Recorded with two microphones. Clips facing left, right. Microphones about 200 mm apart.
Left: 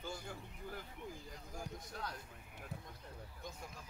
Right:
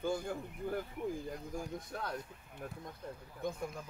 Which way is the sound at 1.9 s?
55° right (ahead or behind).